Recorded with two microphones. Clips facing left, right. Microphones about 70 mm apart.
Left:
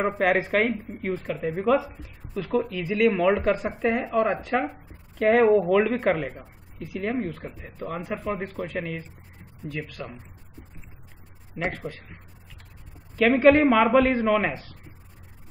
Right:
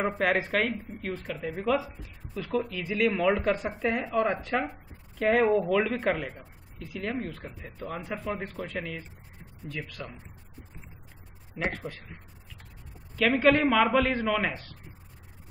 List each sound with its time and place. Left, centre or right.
0.0 s speech: centre
11.5 s speech: centre
13.1 s a woman's voice: centre